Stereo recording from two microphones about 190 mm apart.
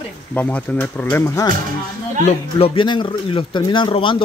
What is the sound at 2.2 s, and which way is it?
Speech, 30° left (ahead or behind).